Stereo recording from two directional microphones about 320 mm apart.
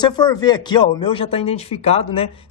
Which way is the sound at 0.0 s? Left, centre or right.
Centre.